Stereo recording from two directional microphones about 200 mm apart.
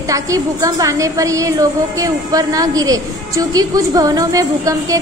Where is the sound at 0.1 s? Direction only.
15° right (ahead or behind).